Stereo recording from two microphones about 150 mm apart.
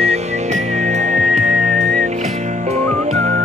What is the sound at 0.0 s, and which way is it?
Music, 50° right (ahead or behind).